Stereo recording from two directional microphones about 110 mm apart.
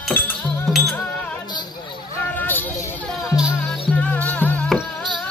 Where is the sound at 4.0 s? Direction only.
15° left (ahead or behind).